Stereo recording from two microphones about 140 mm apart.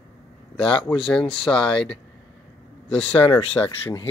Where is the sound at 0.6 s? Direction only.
35° left (ahead or behind).